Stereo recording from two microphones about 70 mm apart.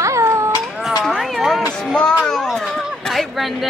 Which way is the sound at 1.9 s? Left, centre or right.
Centre.